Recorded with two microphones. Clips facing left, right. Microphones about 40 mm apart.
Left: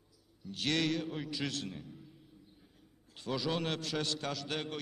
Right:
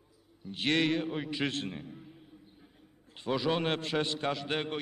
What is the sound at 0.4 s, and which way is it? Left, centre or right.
A man's voice, right.